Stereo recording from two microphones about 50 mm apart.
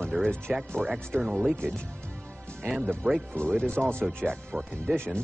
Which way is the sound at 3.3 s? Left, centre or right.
Centre.